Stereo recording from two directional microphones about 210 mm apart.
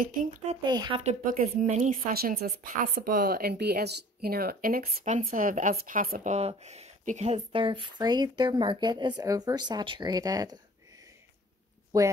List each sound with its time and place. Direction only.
0.0 s a woman's voice: 40° right (ahead or behind)
0.7 s a woman's voice: 20° right (ahead or behind)